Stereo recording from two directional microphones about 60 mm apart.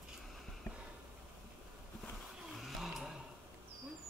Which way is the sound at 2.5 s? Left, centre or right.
Centre.